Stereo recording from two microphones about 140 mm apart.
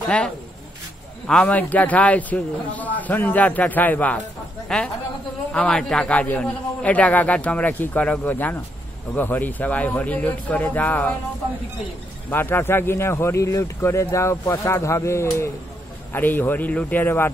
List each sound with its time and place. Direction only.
1.2 s a man's voice: 10° left (ahead or behind)
12.3 s a man's voice: 15° left (ahead or behind)